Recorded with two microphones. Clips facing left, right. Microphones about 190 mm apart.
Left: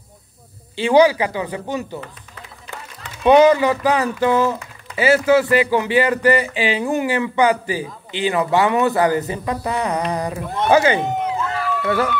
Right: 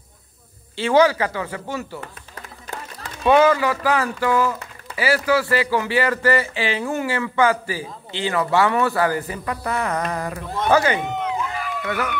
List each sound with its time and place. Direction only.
0.7 s speech: 15° left (ahead or behind)
3.3 s speech: 20° left (ahead or behind)